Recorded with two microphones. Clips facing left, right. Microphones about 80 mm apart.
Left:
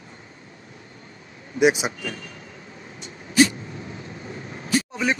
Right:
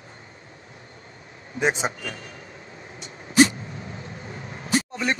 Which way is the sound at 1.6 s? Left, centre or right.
Right.